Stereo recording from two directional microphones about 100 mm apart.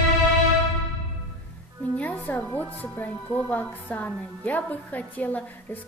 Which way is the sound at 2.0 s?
15° left (ahead or behind).